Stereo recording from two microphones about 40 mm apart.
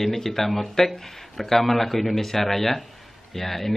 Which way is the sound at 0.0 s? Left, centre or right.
Centre.